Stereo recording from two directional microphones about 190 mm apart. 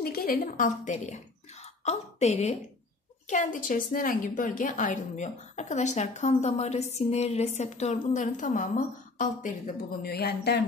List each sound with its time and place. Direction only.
0.0 s a woman's voice: 50° left (ahead or behind)